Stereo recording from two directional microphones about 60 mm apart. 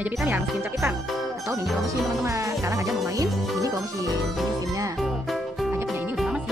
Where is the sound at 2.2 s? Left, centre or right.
Right.